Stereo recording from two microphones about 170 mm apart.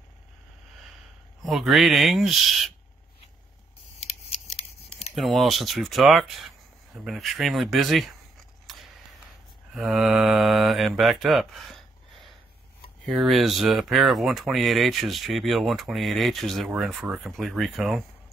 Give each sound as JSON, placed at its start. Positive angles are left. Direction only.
{"t": 1.4, "sound": "speech", "side_deg": 0}
{"t": 4.3, "sound": "scissors", "side_deg": 35}
{"t": 5.1, "sound": "speech", "side_deg": 0}
{"t": 9.8, "sound": "speech", "side_deg": -5}